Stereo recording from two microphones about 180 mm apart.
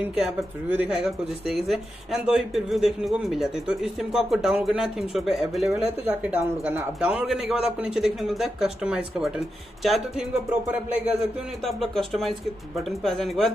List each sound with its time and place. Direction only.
0.0 s speech: 10° right (ahead or behind)